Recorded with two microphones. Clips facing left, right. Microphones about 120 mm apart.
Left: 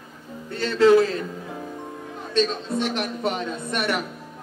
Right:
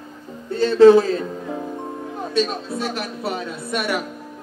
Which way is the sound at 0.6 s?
25° right (ahead or behind).